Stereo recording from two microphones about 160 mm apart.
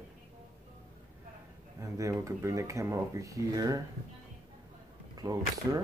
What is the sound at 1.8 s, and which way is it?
Speech, 20° right (ahead or behind).